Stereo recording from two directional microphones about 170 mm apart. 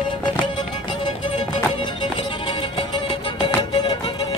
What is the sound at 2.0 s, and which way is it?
Music, 30° left (ahead or behind).